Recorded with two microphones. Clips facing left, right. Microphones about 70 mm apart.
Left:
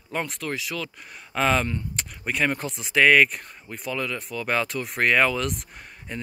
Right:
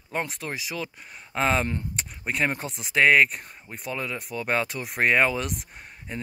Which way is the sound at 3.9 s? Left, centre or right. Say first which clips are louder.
Left 2 dB; centre.